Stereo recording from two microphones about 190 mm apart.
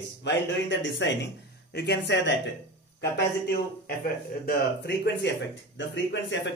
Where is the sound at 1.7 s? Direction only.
60° left (ahead or behind).